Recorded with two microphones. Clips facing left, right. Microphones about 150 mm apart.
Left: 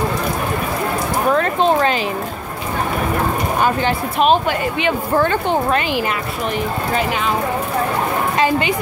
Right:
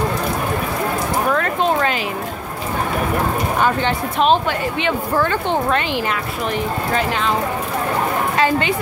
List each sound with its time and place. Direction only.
1.3 s a sound: 25° left (ahead or behind)
3.6 s speech: 10° left (ahead or behind)
8.4 s speech: 15° left (ahead or behind)